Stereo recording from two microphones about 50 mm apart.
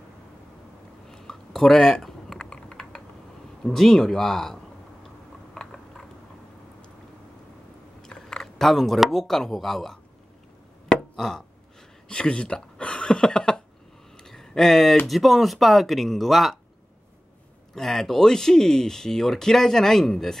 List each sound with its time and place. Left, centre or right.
1.0 s a sound: centre
2.3 s typing: centre
3.6 s speech: centre
5.6 s chewing: centre
8.0 s chewing: centre
8.5 s speech: centre
10.9 s a sound: centre
15.0 s speech: centre
17.7 s speech: centre